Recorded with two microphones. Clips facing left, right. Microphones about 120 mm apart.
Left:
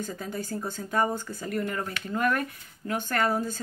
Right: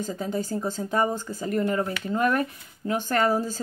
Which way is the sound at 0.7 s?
30° right (ahead or behind).